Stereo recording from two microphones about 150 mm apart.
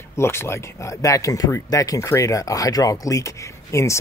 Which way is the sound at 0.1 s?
15° left (ahead or behind).